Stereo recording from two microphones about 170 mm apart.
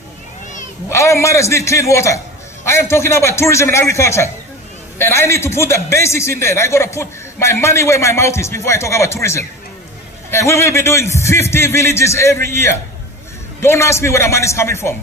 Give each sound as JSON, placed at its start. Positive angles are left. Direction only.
{"t": 0.8, "sound": "a man's voice", "side_deg": 15}